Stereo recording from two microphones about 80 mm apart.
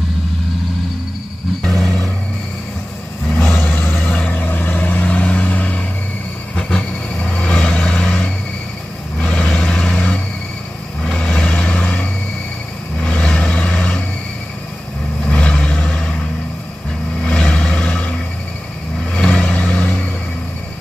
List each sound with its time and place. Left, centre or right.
1.6 s vehicle: centre
3.3 s vehicle: left
15.2 s vehicle: centre
17.2 s vehicle: centre
19.1 s vehicle: centre